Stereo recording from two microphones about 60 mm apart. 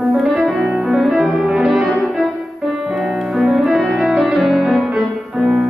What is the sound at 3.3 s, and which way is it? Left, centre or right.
Music, centre.